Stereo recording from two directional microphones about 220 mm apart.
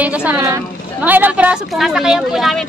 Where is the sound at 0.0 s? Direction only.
5° right (ahead or behind).